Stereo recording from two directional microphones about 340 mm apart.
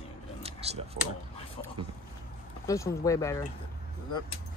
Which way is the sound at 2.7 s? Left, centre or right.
Centre.